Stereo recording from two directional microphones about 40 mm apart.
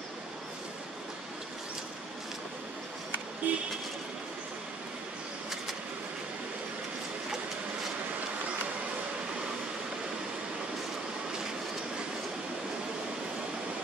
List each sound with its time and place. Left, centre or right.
3.4 s music: right